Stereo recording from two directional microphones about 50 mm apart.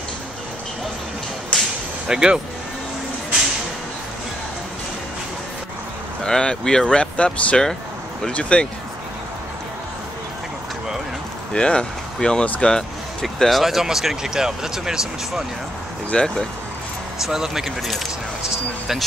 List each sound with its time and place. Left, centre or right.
2.0 s speech: centre
6.2 s speech: centre
11.5 s speech: centre
13.2 s speech: centre
16.1 s speech: centre
17.2 s speech: centre